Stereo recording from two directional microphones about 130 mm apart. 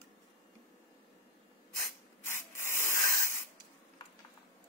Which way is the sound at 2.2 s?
20° left (ahead or behind).